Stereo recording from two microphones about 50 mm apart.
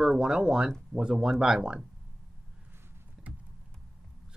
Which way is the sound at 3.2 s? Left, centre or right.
Centre.